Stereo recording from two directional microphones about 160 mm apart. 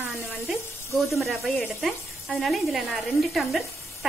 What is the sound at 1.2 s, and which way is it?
Speech, centre (ahead or behind).